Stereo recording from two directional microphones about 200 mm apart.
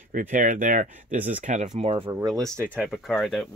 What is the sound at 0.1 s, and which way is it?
Speech, 40° right (ahead or behind).